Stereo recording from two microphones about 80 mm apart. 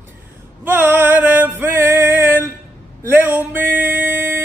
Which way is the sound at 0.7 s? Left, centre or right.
Right.